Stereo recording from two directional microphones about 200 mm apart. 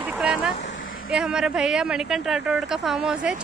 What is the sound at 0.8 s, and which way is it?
Vehicle, 45° left (ahead or behind).